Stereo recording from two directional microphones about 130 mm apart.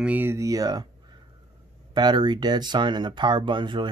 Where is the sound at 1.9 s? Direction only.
35° right (ahead or behind).